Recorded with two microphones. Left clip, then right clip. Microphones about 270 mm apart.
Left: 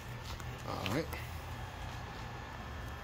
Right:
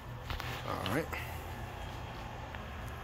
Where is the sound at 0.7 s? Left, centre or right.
Centre.